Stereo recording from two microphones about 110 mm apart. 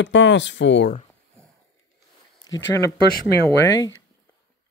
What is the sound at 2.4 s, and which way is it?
Speech, 30° left (ahead or behind).